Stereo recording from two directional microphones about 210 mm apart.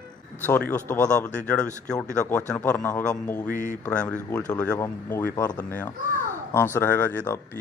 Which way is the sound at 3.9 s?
5° left (ahead or behind).